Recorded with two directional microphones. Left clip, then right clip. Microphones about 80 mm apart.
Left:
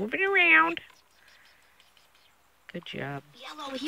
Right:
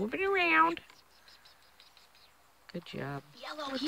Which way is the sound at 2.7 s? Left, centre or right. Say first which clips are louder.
Left 4 dB; left.